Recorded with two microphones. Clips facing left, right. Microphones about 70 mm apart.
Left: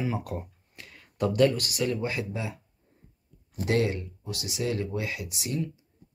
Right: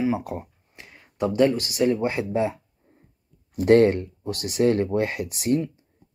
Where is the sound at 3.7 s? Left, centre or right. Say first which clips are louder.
Right 10 dB; right.